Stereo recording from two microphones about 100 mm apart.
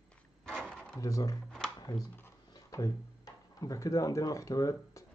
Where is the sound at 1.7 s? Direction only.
40° left (ahead or behind).